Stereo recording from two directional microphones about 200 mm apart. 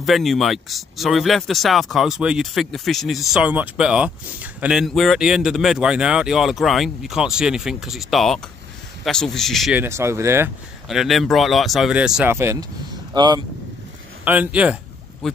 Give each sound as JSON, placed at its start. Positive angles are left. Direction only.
{"t": 0.0, "sound": "speech", "side_deg": 0}
{"t": 9.8, "sound": "speech", "side_deg": -15}
{"t": 10.9, "sound": "speech", "side_deg": 0}
{"t": 14.2, "sound": "speech", "side_deg": -10}